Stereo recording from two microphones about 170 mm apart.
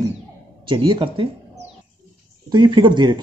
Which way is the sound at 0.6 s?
30° right (ahead or behind).